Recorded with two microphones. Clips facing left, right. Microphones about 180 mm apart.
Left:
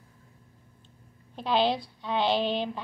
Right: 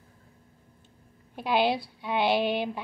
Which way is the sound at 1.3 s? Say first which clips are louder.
Even; 10° right (ahead or behind).